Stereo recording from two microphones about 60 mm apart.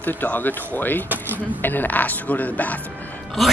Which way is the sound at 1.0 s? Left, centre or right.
Right.